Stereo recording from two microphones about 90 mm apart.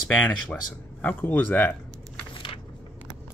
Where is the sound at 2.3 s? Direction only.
70° left (ahead or behind).